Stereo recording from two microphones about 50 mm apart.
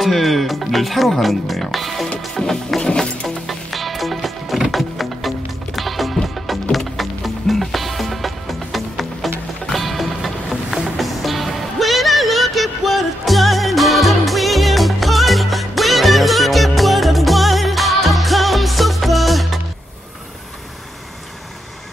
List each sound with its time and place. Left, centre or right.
0.0 s speech: centre
2.2 s music: centre
2.8 s music: left
3.4 s music: centre